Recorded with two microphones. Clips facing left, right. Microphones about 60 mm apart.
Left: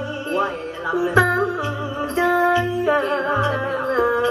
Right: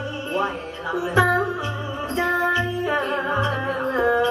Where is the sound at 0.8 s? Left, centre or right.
Left.